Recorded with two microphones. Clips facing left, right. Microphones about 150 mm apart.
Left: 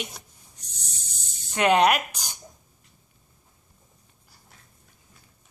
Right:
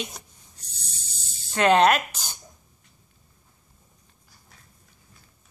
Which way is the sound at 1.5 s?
15° left (ahead or behind).